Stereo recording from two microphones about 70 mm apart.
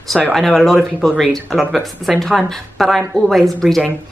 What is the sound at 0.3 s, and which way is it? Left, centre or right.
Speech, centre.